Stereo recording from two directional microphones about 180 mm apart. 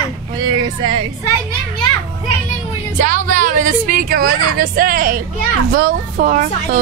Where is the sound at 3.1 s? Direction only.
45° right (ahead or behind).